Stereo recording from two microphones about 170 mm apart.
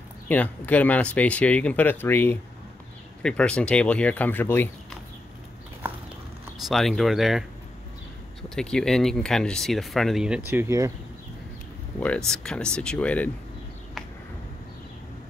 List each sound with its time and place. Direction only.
0.3 s speech: 10° left (ahead or behind)
6.7 s speech: centre (ahead or behind)
10.5 s speech: 15° right (ahead or behind)
12.3 s speech: 5° left (ahead or behind)